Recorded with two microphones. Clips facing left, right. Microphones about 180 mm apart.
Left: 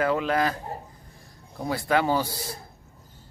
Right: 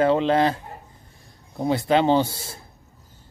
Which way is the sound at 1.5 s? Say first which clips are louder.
Right 5 dB; 20° right (ahead or behind).